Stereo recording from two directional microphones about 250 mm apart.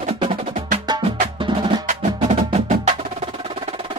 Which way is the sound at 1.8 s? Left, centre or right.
Right.